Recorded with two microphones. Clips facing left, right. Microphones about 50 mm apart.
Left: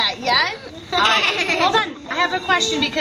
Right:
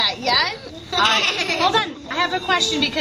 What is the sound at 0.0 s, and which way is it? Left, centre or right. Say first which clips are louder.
A child's voice: left 1 dB; centre.